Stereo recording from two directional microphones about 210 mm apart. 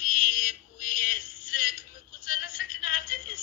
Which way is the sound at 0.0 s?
40° left (ahead or behind).